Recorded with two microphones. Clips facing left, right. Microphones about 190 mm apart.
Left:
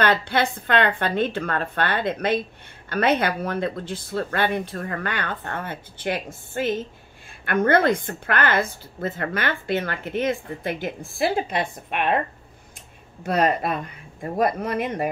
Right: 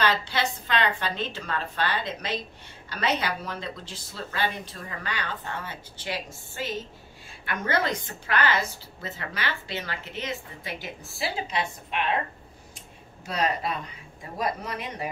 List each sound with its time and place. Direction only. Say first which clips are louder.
0.0 s a woman's voice: left 5 dB; 55° left (ahead or behind)
13.2 s speech: left 6 dB; 55° left (ahead or behind)